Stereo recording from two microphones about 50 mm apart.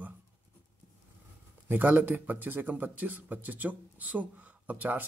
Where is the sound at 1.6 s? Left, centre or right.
Right.